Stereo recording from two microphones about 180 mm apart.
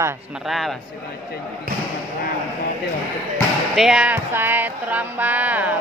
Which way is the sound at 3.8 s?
5° right (ahead or behind).